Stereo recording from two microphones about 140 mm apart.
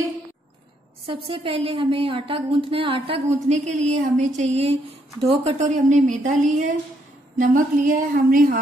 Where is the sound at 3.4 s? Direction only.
55° right (ahead or behind).